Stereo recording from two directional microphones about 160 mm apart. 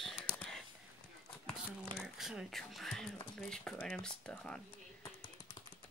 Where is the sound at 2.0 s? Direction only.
Centre (ahead or behind).